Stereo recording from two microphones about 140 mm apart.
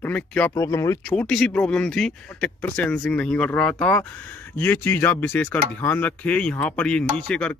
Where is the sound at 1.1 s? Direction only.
5° left (ahead or behind).